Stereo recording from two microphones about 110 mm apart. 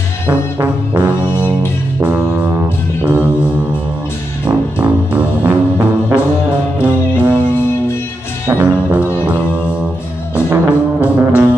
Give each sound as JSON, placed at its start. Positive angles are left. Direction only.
{"t": 0.3, "sound": "brass instrument", "side_deg": -15}
{"t": 2.0, "sound": "music", "side_deg": -15}
{"t": 4.5, "sound": "music", "side_deg": -10}
{"t": 7.2, "sound": "music", "side_deg": -15}
{"t": 8.5, "sound": "music", "side_deg": -15}